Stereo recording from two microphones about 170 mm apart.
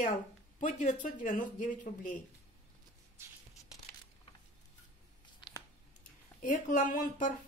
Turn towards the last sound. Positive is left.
turn(degrees=50)  # may be behind; listen again after turning